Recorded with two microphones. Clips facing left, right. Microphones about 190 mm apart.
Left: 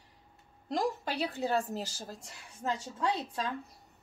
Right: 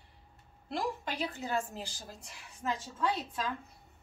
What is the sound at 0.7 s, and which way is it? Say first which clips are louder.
A woman's voice: left 3 dB; 40° left (ahead or behind).